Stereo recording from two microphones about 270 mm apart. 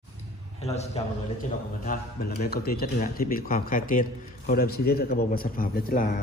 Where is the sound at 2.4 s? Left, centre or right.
Left.